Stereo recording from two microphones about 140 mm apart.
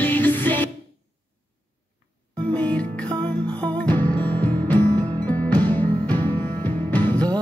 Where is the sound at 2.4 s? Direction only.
10° left (ahead or behind).